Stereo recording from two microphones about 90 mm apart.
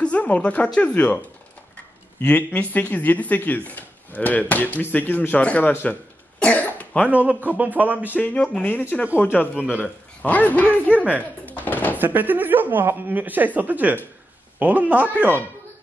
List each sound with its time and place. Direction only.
0.0 s speech: 15° left (ahead or behind)
2.2 s speech: 20° left (ahead or behind)
6.4 s cough: 15° left (ahead or behind)
7.1 s speech: 20° right (ahead or behind)
8.2 s speech: 20° left (ahead or behind)
10.9 s speech: 15° right (ahead or behind)
11.4 s door: 20° left (ahead or behind)
12.0 s speech: 20° right (ahead or behind)